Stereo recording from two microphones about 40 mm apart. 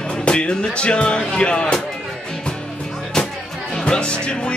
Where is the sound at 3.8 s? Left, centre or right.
Left.